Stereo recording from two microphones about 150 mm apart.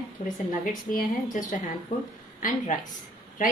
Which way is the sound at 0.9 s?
60° left (ahead or behind).